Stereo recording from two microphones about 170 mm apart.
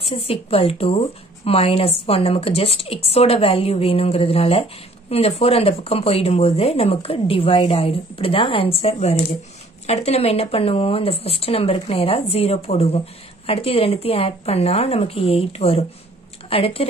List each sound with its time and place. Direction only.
0.0 s a woman's voice: 35° left (ahead or behind)